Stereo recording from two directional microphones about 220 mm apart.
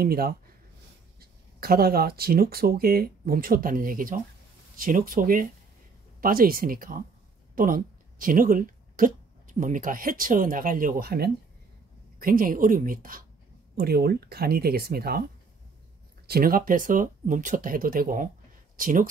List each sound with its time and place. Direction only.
0.0 s speech: 45° right (ahead or behind)
16.3 s speech: 40° right (ahead or behind)